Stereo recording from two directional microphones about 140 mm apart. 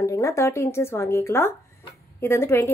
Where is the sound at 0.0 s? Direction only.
20° left (ahead or behind).